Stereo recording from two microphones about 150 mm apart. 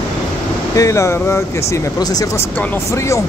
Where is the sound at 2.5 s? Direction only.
10° left (ahead or behind).